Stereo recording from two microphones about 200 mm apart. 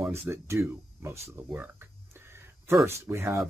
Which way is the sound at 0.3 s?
15° right (ahead or behind).